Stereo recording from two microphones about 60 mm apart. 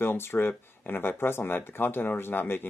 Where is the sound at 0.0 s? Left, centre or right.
Left.